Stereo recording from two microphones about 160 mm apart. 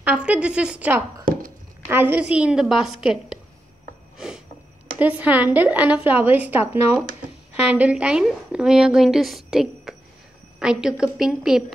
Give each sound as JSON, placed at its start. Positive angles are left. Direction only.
{"t": 0.0, "sound": "a woman's voice", "side_deg": -10}
{"t": 4.9, "sound": "a woman's voice", "side_deg": -10}